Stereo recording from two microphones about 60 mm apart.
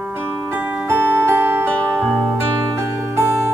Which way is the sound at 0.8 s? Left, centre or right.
Right.